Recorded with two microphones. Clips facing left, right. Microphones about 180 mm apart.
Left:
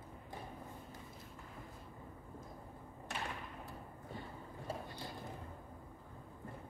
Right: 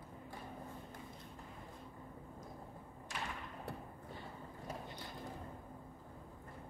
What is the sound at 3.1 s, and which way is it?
Thump, 60° left (ahead or behind).